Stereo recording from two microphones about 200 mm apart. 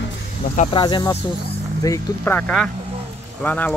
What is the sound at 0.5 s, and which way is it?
Speech, 35° left (ahead or behind).